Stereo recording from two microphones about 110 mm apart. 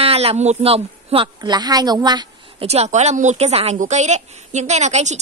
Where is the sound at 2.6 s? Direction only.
75° right (ahead or behind).